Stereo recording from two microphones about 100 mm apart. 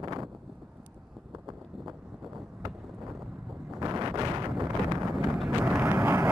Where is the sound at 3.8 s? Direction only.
40° right (ahead or behind).